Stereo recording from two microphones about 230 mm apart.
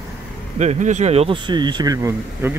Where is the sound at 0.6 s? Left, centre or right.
Right.